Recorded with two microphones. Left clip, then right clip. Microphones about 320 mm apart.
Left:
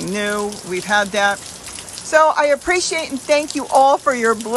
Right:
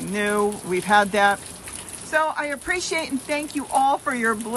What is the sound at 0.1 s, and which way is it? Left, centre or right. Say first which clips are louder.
Speech: even; centre.